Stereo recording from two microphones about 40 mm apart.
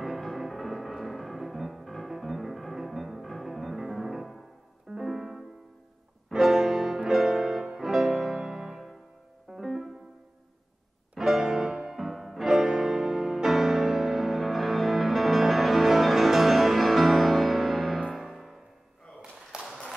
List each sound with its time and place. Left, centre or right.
0.0 s music: centre
11.1 s music: centre
12.4 s music: centre
19.5 s a sound: centre